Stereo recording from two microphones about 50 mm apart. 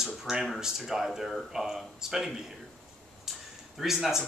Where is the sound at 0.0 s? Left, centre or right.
Centre.